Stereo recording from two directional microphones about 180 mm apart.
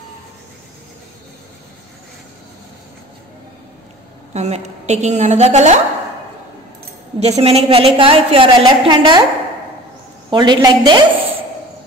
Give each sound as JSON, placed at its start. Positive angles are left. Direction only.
{"t": 4.3, "sound": "a woman's voice", "side_deg": -40}
{"t": 7.2, "sound": "a woman's voice", "side_deg": -35}
{"t": 10.3, "sound": "a woman's voice", "side_deg": -25}